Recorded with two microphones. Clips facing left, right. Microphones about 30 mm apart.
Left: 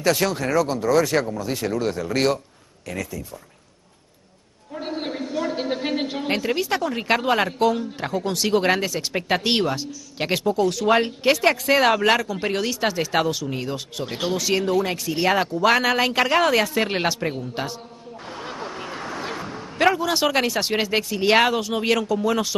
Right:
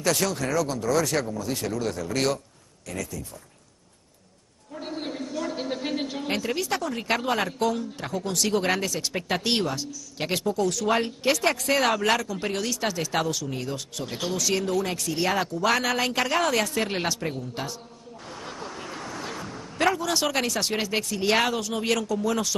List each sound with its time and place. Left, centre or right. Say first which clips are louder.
0.0 s a woman's voice: left 4 dB; left
4.7 s a woman's voice: left 4 dB; left